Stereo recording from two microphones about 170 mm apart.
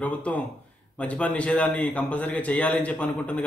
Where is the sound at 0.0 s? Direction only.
10° left (ahead or behind).